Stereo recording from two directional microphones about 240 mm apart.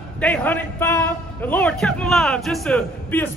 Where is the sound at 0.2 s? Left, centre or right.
Centre.